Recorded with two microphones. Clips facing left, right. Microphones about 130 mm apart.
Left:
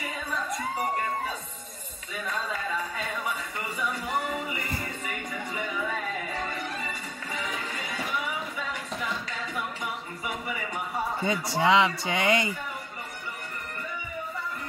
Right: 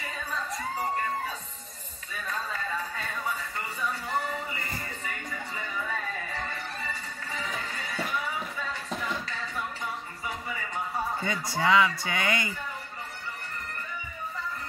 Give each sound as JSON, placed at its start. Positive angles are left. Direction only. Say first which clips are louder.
{"t": 4.1, "sound": "music", "louder": "left 2 dB", "side_deg": 15}
{"t": 11.1, "sound": "a man's voice", "louder": "left 3 dB", "side_deg": 25}